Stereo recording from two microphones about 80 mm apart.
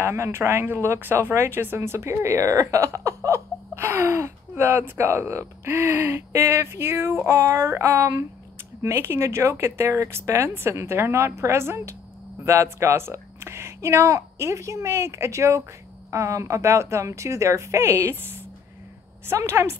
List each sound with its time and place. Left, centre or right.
0.0 s speech: right